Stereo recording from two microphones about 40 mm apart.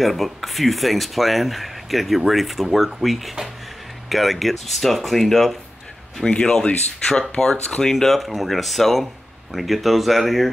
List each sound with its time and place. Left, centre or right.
0.0 s speech: centre
6.3 s speech: left; by 10.5 s centre